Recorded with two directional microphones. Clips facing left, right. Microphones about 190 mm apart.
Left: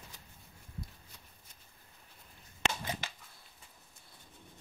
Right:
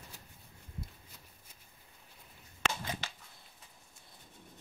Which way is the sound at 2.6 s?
20° left (ahead or behind).